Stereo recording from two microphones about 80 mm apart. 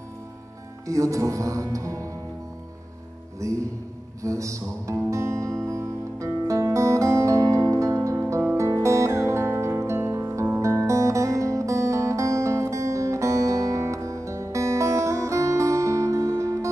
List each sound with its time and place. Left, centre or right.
0.8 s speech: right
3.3 s speech: right
4.2 s music: right